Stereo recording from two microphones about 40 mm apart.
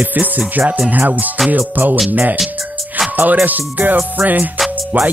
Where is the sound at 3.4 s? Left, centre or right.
Right.